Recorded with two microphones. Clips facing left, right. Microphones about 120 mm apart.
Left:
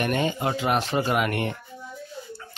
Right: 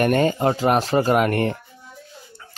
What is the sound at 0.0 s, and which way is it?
Speech, 45° right (ahead or behind).